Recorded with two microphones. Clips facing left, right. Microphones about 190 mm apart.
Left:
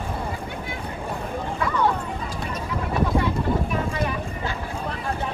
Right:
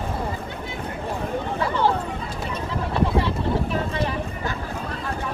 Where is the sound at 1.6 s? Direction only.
30° right (ahead or behind).